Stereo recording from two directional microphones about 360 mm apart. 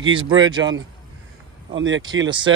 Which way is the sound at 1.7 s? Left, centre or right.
Right.